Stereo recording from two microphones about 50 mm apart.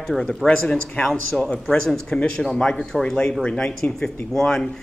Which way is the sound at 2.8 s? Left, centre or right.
Centre.